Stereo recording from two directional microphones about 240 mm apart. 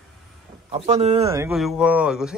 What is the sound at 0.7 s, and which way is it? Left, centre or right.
Speech, right.